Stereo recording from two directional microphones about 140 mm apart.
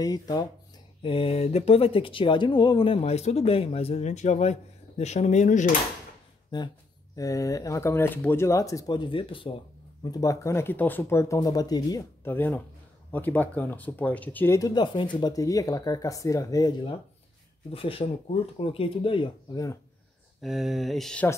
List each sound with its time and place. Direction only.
0.0 s speech: 25° left (ahead or behind)
1.0 s speech: 40° left (ahead or behind); by 5.8 s 65° left (ahead or behind)
6.5 s speech: 30° left (ahead or behind)
10.0 s speech: 25° left (ahead or behind)
12.3 s speech: 15° left (ahead or behind)
17.6 s speech: 40° left (ahead or behind); by 19.8 s 25° left (ahead or behind)
20.4 s speech: centre (ahead or behind)